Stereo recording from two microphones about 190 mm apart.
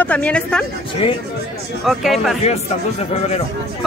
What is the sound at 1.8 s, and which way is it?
Speech, centre (ahead or behind).